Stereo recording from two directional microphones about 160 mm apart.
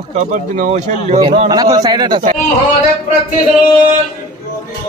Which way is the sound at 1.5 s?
25° right (ahead or behind).